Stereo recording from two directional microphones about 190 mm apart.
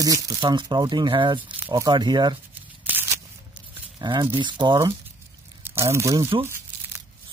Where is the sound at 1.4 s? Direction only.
10° right (ahead or behind).